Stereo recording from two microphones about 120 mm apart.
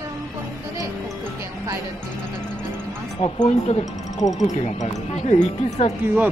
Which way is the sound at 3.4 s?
65° left (ahead or behind).